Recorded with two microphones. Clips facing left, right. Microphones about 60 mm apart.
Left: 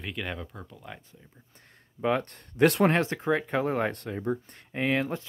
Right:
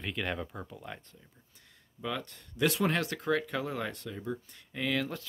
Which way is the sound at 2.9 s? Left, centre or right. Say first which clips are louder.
Left 4 dB; left.